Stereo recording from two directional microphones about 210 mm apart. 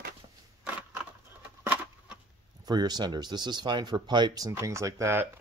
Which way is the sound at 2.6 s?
20° right (ahead or behind).